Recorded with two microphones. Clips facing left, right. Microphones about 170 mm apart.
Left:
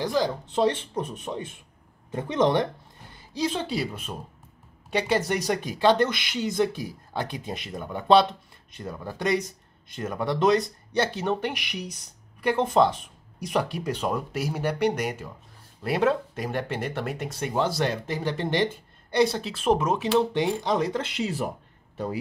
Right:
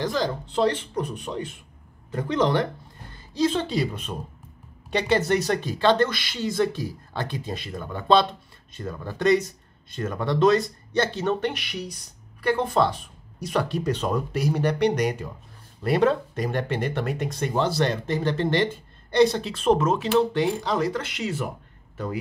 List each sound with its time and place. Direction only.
0.0 s speech: 10° left (ahead or behind)
0.7 s speech: 25° left (ahead or behind)